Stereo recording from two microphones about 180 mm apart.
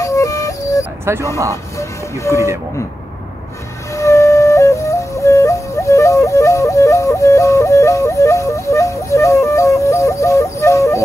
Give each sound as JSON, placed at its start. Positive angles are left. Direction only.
{"t": 0.0, "sound": "music", "side_deg": 20}
{"t": 1.0, "sound": "speech", "side_deg": -15}
{"t": 1.8, "sound": "music", "side_deg": 15}
{"t": 3.9, "sound": "flute", "side_deg": 15}